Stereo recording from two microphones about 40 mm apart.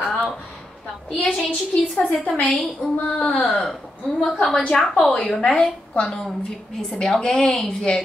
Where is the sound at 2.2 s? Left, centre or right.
Left.